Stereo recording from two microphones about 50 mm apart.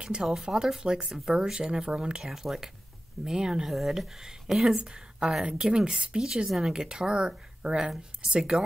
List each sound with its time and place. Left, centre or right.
0.0 s speech: centre
3.6 s speech: centre